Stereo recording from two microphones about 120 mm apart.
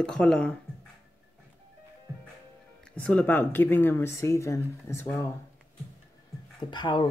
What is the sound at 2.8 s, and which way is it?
Speech, 10° left (ahead or behind).